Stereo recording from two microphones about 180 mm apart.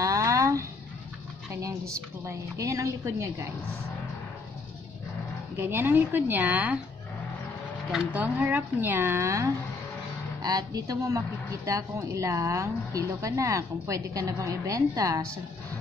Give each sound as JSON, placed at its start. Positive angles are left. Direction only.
{"t": 0.0, "sound": "a sound", "side_deg": -15}
{"t": 2.2, "sound": "speech", "side_deg": -20}
{"t": 5.6, "sound": "speech", "side_deg": -10}
{"t": 7.9, "sound": "speech", "side_deg": -5}